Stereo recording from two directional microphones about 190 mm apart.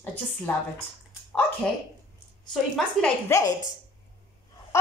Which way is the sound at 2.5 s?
5° left (ahead or behind).